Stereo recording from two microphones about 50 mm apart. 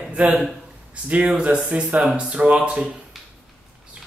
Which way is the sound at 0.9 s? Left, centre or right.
Right.